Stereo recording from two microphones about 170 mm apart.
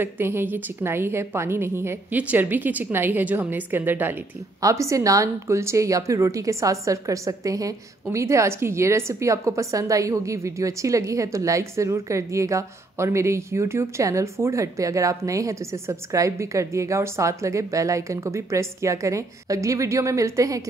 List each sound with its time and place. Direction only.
0.0 s a woman's voice: 15° right (ahead or behind)